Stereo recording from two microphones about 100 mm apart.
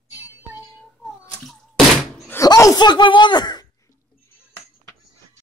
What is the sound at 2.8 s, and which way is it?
Speech, 50° left (ahead or behind).